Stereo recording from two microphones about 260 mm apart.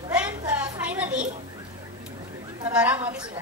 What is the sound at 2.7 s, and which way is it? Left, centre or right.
Speech, centre.